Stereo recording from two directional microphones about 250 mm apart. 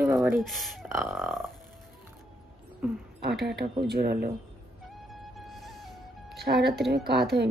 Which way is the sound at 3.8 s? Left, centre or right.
Right.